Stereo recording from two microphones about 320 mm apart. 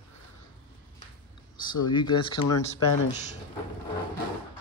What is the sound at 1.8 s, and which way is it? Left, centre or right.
Speech, centre.